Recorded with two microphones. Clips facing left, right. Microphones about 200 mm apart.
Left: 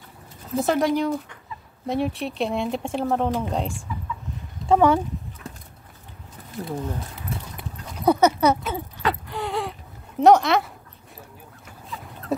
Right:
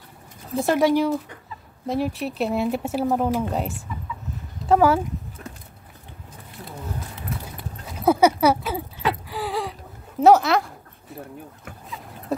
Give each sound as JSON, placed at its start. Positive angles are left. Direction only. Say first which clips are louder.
{"t": 0.6, "sound": "speech", "louder": "right 2 dB", "side_deg": 0}
{"t": 6.6, "sound": "speech", "louder": "left 9 dB", "side_deg": 40}
{"t": 7.3, "sound": "clip-clop", "louder": "even", "side_deg": 30}
{"t": 8.0, "sound": "a sound", "louder": "right 1 dB", "side_deg": -5}
{"t": 12.3, "sound": "dog", "louder": "left 1 dB", "side_deg": 0}